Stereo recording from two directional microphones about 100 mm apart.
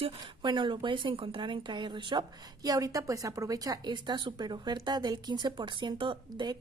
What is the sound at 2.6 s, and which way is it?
A woman's voice, 35° right (ahead or behind).